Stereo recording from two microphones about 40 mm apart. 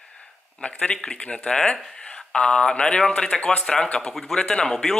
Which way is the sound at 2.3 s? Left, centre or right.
Left.